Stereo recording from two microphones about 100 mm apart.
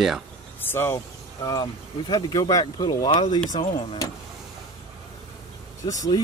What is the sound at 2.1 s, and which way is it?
Speech, 35° left (ahead or behind).